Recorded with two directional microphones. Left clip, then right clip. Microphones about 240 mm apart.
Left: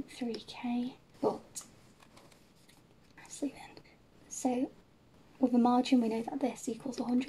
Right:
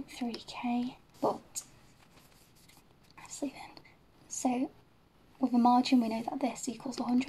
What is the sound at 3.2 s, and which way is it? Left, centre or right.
Whispering, right.